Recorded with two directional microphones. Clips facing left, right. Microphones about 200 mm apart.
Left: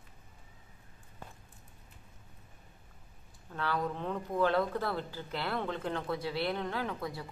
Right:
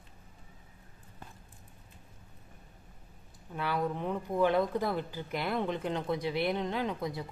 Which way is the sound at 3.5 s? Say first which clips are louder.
Right 2 dB; 10° right (ahead or behind).